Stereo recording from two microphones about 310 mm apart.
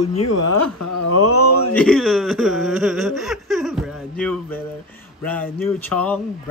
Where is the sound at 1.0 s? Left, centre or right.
Left.